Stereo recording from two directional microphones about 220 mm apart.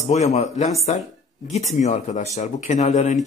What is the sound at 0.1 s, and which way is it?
A man's voice, 30° left (ahead or behind).